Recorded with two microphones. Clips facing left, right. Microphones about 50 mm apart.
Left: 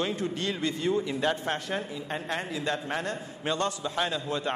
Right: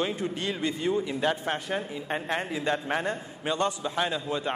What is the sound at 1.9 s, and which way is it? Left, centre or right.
A man's voice, centre.